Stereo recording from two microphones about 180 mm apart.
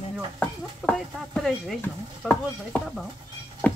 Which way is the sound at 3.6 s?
5° left (ahead or behind).